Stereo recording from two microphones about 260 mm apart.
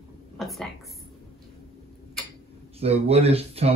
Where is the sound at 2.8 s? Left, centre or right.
Right.